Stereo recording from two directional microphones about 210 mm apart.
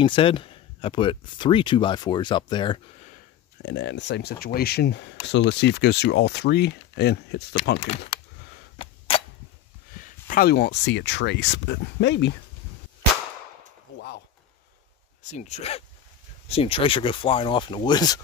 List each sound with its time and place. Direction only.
0.0 s speech: 25° left (ahead or behind)
3.6 s speech: 55° left (ahead or behind)
9.9 s speech: 40° left (ahead or behind)
13.9 s a sound: 50° left (ahead or behind)
15.2 s speech: 30° left (ahead or behind)